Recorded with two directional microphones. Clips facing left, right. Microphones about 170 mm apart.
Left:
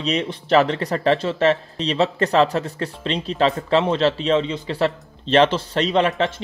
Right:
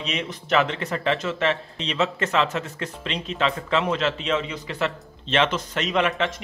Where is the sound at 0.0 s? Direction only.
35° left (ahead or behind).